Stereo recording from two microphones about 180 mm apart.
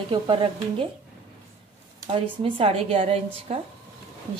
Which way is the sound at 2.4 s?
30° right (ahead or behind).